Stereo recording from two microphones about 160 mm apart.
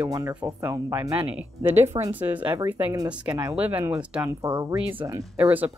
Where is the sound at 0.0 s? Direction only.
20° right (ahead or behind).